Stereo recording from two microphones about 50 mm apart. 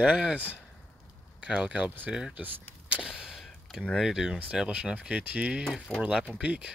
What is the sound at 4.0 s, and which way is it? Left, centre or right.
Speech, centre.